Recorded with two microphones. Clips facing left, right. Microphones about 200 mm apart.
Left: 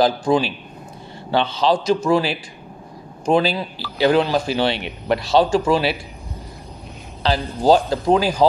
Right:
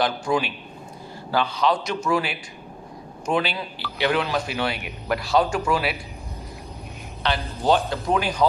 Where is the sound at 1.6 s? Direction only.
30° left (ahead or behind).